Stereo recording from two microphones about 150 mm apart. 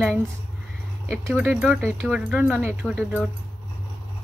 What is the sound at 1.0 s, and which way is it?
Speech, 15° right (ahead or behind).